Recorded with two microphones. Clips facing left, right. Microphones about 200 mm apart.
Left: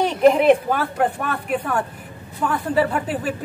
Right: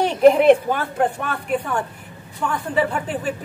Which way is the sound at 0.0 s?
Centre (ahead or behind).